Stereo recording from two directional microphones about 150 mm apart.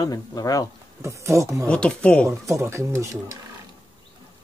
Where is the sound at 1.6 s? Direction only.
5° left (ahead or behind).